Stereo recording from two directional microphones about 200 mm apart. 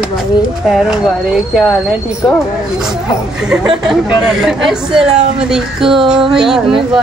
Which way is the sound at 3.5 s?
5° right (ahead or behind).